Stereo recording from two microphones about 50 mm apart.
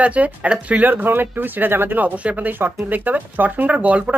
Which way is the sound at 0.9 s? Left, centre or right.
Right.